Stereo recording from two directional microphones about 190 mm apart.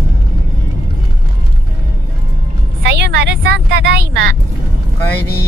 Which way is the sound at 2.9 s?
65° right (ahead or behind).